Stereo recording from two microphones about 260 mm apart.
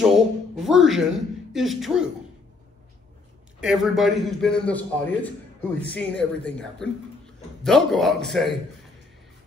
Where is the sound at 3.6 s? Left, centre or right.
Centre.